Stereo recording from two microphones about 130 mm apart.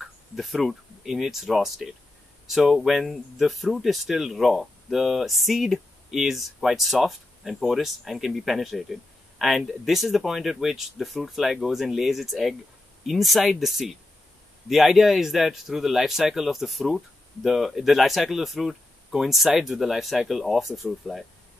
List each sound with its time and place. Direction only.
0.0 s speech: centre (ahead or behind)